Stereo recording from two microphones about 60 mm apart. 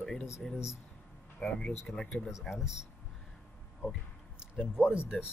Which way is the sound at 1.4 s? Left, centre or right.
Centre.